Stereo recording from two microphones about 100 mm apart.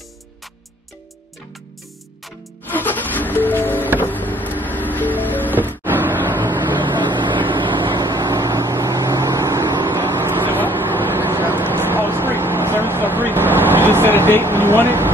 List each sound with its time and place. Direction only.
2.7 s music: 20° left (ahead or behind)
5.9 s vehicle: 20° right (ahead or behind)
6.8 s vehicle: 50° right (ahead or behind)
8.1 s vehicle: 35° right (ahead or behind)
9.7 s vehicle: 45° right (ahead or behind)
9.9 s vehicle: 25° right (ahead or behind)
14.9 s a sound: 20° right (ahead or behind)